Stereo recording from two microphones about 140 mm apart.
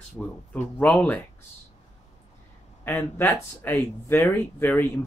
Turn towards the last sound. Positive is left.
turn(degrees=15)  # may be behind; listen again after turning